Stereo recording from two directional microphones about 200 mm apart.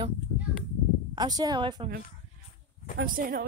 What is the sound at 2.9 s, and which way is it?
Speech, 45° right (ahead or behind).